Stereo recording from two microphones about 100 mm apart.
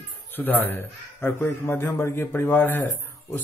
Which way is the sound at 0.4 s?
20° left (ahead or behind).